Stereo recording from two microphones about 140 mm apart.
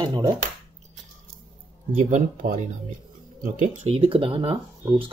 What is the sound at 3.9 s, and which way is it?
Speech, 40° right (ahead or behind).